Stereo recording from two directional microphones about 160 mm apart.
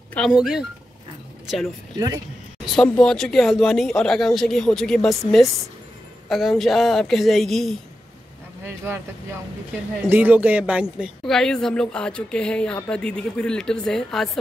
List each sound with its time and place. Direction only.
0.3 s speech: 5° right (ahead or behind)
2.6 s a woman's voice: centre (ahead or behind)
8.6 s speech: 15° right (ahead or behind); by 14.4 s centre (ahead or behind)